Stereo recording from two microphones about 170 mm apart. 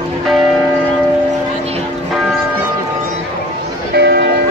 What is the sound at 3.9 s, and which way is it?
Music, 75° right (ahead or behind).